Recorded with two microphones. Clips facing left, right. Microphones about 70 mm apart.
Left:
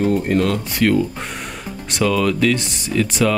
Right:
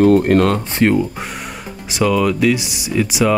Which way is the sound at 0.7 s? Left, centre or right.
Right.